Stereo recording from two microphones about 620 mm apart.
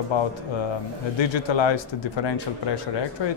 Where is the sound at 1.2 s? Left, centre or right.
Left.